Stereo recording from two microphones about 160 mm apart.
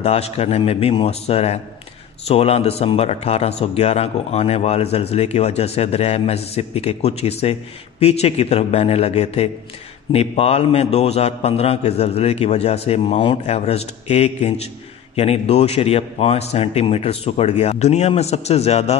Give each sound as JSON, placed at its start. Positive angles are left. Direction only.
{"t": 0.0, "sound": "a man's voice", "side_deg": 40}